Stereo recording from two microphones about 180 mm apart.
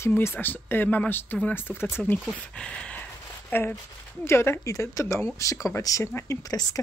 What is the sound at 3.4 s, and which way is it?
Speech, 10° left (ahead or behind).